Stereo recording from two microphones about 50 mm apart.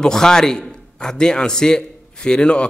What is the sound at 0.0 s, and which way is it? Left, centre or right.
Speech, centre.